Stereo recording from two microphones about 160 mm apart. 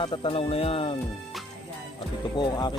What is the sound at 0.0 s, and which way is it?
Speech, 30° left (ahead or behind).